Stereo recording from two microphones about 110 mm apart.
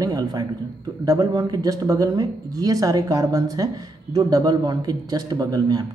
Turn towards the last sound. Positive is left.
turn(degrees=-35)  # may be behind; listen again after turning